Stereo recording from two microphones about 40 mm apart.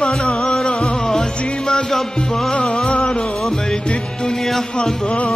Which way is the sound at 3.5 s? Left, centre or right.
Left.